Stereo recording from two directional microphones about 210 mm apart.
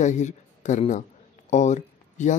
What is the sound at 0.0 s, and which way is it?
Speech, 35° left (ahead or behind).